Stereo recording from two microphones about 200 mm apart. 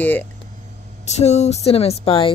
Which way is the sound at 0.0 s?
10° left (ahead or behind).